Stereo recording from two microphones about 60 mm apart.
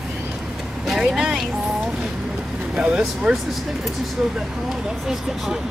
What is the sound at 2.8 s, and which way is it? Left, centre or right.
Speech, centre.